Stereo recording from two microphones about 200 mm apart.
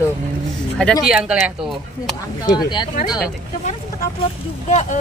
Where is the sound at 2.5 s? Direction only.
20° left (ahead or behind).